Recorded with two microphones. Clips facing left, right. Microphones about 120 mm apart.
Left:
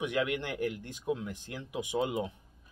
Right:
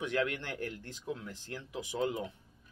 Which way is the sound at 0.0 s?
15° left (ahead or behind).